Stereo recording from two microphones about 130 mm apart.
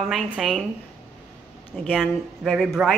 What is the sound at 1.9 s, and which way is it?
A woman's voice, 5° right (ahead or behind).